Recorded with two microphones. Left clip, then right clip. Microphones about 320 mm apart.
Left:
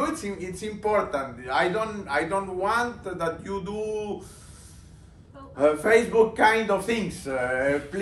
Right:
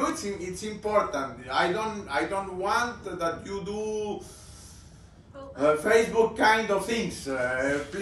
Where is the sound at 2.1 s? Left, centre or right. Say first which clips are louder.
Left 3 dB; centre.